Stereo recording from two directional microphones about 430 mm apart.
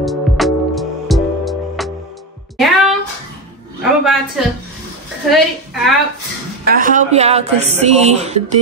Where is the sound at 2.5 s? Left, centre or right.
Centre.